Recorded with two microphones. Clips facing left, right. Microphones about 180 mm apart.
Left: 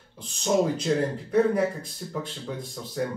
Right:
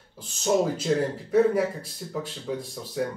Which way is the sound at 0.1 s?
5° right (ahead or behind).